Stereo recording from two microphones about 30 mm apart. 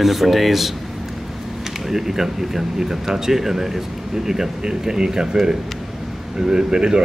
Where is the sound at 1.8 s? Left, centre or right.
Centre.